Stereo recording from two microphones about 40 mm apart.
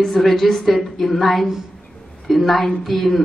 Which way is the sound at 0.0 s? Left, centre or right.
Centre.